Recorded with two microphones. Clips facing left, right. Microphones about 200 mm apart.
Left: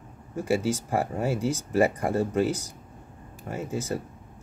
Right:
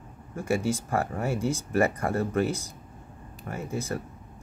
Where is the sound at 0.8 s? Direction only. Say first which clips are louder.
Left 2 dB; 15° left (ahead or behind).